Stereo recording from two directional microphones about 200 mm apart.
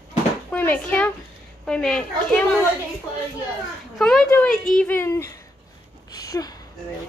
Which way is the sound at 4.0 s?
5° left (ahead or behind).